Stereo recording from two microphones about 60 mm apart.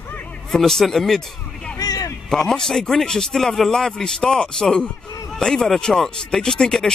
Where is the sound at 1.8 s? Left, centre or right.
Left.